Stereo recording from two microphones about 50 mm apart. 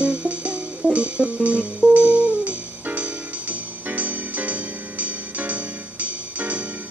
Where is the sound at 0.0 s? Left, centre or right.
Right.